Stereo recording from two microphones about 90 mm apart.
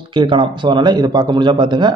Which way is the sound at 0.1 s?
60° right (ahead or behind).